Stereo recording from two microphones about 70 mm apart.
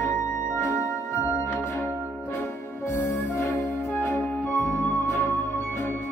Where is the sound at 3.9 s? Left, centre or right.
Left.